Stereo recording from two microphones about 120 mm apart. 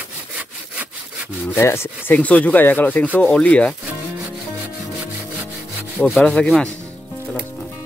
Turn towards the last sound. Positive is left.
turn(degrees=5)  # may be behind; listen again after turning